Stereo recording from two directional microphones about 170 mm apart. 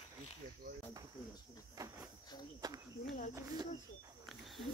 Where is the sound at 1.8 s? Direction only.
20° right (ahead or behind).